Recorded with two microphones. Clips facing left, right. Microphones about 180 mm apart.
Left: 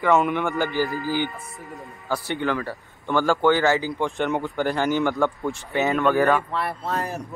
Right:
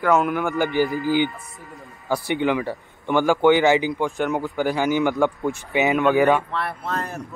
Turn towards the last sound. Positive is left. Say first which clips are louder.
# left 1 dB
turn(degrees=5)  # may be behind; listen again after turning